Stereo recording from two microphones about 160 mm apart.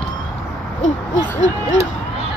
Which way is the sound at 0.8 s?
50° left (ahead or behind).